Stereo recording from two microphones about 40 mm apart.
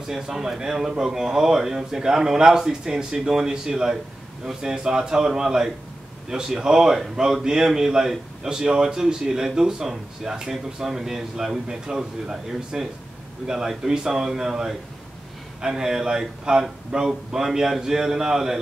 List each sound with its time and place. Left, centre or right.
0.1 s speech: centre